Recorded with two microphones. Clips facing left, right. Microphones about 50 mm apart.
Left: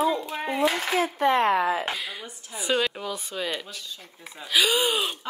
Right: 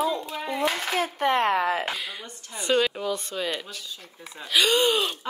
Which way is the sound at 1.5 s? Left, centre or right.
Right.